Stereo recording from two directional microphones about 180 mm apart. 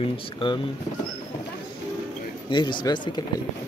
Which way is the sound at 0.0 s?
25° left (ahead or behind).